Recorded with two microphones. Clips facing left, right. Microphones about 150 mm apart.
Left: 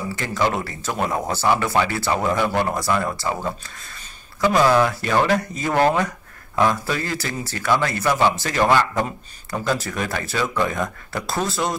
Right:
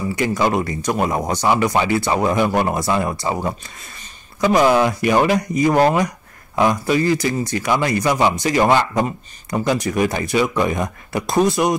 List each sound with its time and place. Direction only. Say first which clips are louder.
0.2 s speech: right 4 dB; 15° right (ahead or behind)